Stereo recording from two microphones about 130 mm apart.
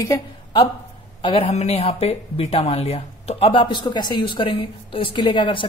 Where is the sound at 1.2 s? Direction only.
45° left (ahead or behind).